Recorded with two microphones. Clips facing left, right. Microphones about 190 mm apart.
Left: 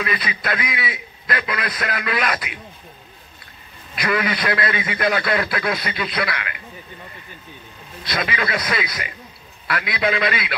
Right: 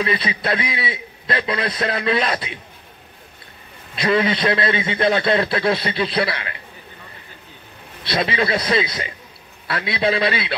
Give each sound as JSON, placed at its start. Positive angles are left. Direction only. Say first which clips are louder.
{"t": 0.0, "sound": "a man's voice", "louder": "right 3 dB", "side_deg": -30}
{"t": 3.9, "sound": "a man's voice", "louder": "right 4 dB", "side_deg": -25}
{"t": 8.0, "sound": "a man's voice", "louder": "right 4 dB", "side_deg": -30}